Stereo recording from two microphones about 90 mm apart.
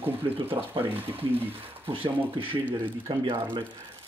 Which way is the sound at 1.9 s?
80° right.